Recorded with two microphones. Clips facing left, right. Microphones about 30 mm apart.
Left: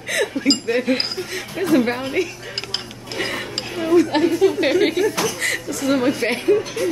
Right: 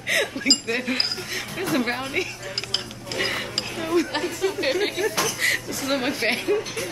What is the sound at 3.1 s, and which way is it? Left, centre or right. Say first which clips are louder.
Speech: left 1 dB; centre.